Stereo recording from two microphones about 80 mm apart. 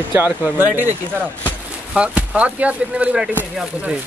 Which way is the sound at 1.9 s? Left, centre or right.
Centre.